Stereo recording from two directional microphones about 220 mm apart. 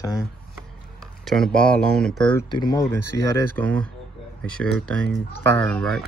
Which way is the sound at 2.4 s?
20° left (ahead or behind).